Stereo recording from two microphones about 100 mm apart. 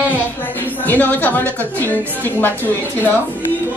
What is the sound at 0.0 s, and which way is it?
Speech, 20° left (ahead or behind).